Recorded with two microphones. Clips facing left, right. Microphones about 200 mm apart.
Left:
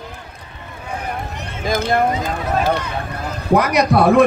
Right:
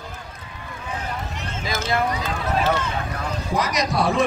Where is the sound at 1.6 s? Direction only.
55° left (ahead or behind).